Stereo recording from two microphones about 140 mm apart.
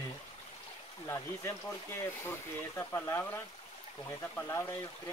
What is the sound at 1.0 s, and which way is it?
Speech, 20° left (ahead or behind).